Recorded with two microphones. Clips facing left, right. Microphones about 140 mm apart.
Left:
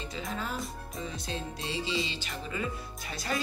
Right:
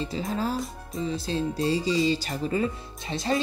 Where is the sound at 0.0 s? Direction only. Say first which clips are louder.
Right 8 dB; 30° right (ahead or behind).